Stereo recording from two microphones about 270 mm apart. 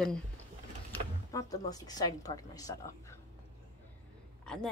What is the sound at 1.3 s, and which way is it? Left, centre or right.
A woman's voice, centre.